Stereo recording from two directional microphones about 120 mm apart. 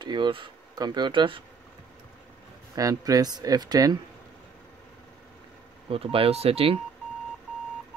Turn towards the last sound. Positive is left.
turn(degrees=-55)  # may be behind; listen again after turning